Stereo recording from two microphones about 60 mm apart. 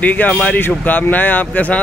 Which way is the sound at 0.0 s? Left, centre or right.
Left.